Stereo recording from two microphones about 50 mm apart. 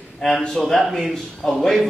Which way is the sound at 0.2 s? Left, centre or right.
Centre.